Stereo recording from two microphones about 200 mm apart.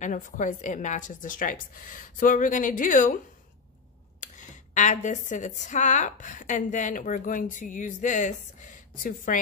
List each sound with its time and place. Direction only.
0.0 s a woman's voice: 40° left (ahead or behind)
4.2 s a woman's voice: 35° left (ahead or behind)